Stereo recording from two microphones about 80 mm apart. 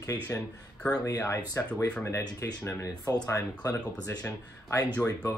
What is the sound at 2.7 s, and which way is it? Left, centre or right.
Speech, left.